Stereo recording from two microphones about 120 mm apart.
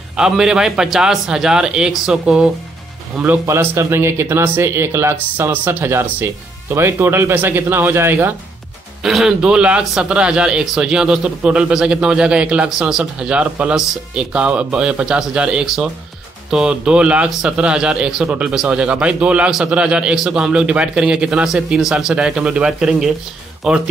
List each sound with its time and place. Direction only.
0.1 s a man's voice: 5° right (ahead or behind)
3.4 s speech: 20° right (ahead or behind)
9.0 s a man's voice: 5° right (ahead or behind)